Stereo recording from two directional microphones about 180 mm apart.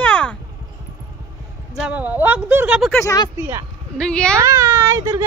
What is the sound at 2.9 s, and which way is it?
Speech, 15° left (ahead or behind).